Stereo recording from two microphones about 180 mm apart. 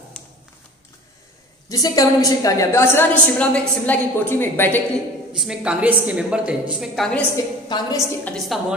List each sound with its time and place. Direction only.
0.2 s a sound: centre (ahead or behind)
1.7 s a woman's voice: 20° left (ahead or behind)
5.3 s speech: 5° right (ahead or behind)
7.6 s a woman's voice: 20° left (ahead or behind)